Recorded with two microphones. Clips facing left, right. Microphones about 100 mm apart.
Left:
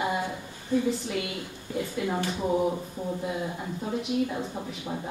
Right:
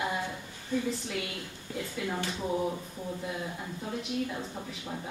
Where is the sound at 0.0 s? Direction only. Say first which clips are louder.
Left 4 dB; 15° left (ahead or behind).